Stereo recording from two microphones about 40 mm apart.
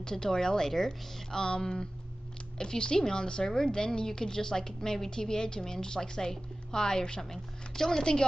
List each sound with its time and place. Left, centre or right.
0.0 s a woman's voice: centre